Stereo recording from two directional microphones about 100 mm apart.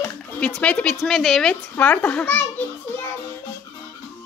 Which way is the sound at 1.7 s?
15° left (ahead or behind).